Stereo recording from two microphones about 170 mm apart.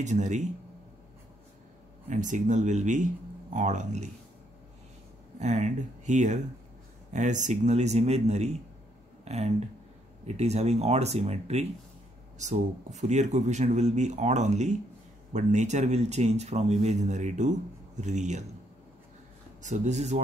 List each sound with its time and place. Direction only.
0.0 s speech: 45° right (ahead or behind)
2.0 s speech: 50° right (ahead or behind)
5.4 s speech: 45° right (ahead or behind)
19.6 s speech: 45° right (ahead or behind)